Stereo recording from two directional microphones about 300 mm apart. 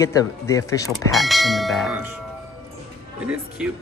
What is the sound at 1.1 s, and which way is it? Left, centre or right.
Speech, centre.